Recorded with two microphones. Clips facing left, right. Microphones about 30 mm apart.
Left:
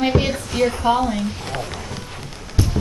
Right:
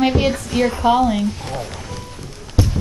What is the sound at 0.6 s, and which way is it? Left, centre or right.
Speech, centre.